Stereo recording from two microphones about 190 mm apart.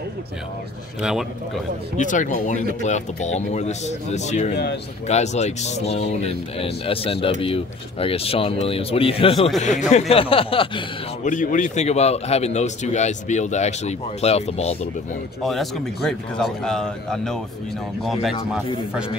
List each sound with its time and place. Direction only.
2.0 s a man's voice: 40° left (ahead or behind)
9.6 s speech: 40° left (ahead or behind)
11.2 s a man's voice: 40° left (ahead or behind)
15.4 s a man's voice: centre (ahead or behind)